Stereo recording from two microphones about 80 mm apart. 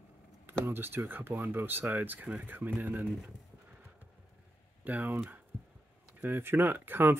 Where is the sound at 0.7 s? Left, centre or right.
Right.